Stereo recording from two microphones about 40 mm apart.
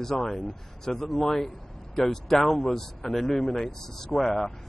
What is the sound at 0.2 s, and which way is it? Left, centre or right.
Speech, centre.